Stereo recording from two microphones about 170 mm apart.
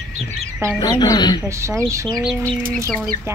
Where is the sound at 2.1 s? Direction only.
Centre (ahead or behind).